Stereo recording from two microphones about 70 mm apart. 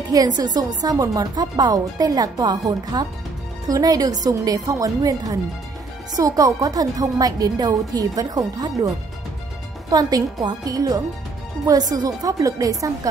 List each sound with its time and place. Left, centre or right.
0.1 s speech: right